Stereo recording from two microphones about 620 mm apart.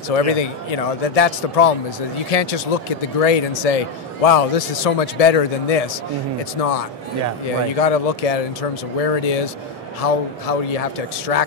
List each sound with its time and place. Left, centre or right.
0.1 s a man's voice: left